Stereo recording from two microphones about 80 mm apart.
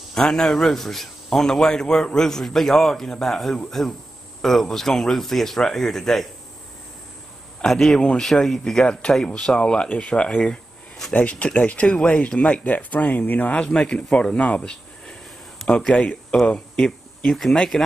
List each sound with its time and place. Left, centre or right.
0.1 s a man's voice: centre
7.6 s speech: centre
15.9 s speech: centre